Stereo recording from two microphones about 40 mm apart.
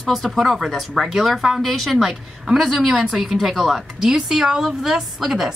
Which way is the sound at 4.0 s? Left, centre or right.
Centre.